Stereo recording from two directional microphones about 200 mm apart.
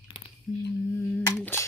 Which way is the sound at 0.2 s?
30° left (ahead or behind).